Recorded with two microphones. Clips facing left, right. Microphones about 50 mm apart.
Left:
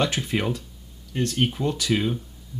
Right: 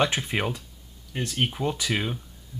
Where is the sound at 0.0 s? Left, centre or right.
Centre.